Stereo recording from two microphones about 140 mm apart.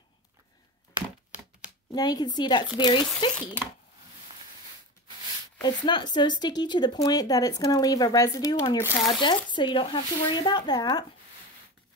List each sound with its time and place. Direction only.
1.9 s speech: 30° left (ahead or behind)
5.6 s speech: 30° left (ahead or behind)